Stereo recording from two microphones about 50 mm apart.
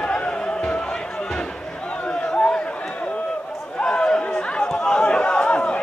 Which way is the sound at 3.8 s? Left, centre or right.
Centre.